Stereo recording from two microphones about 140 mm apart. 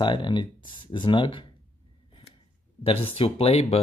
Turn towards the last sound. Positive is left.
turn(degrees=45)  # may be behind; listen again after turning